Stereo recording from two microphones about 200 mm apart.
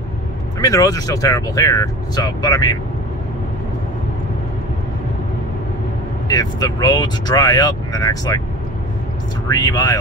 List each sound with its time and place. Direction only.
0.6 s speech: 15° left (ahead or behind)
6.2 s speech: 20° left (ahead or behind)
9.5 s speech: 20° left (ahead or behind)